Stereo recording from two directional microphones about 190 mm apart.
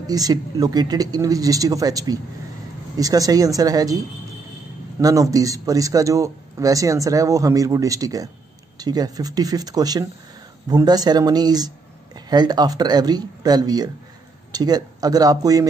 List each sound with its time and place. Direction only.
0.0 s speech: 20° right (ahead or behind)
5.0 s speech: 20° right (ahead or behind)